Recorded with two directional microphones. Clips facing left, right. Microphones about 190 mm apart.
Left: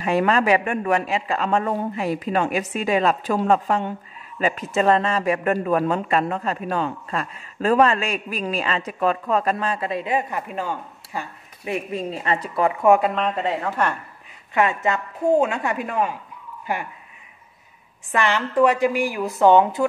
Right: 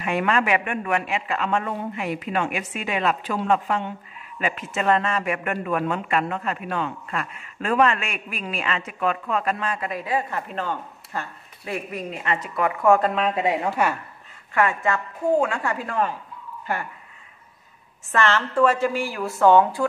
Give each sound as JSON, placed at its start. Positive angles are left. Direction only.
{"t": 0.0, "sound": "speech", "side_deg": 35}
{"t": 12.8, "sound": "a woman's voice", "side_deg": 15}
{"t": 13.1, "sound": "a woman's voice", "side_deg": -5}
{"t": 14.5, "sound": "a woman's voice", "side_deg": 20}
{"t": 18.1, "sound": "a woman's voice", "side_deg": 15}